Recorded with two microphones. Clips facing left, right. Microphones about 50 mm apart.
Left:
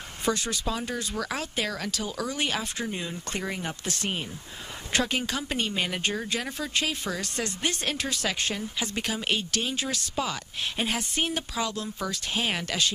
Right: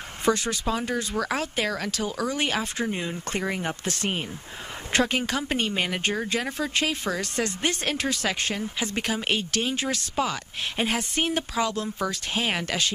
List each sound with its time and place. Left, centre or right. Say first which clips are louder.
0.2 s speech: right 4 dB; right
3.8 s speech: right 3 dB; right